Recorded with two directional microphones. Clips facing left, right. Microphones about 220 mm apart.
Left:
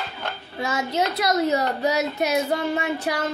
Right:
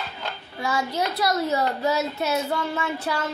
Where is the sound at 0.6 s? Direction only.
20° left (ahead or behind).